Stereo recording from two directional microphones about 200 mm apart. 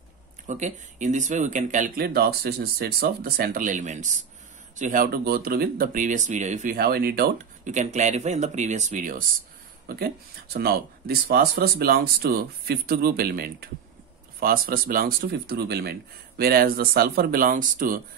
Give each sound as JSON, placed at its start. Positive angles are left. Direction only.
{"t": 0.5, "sound": "speech", "side_deg": -35}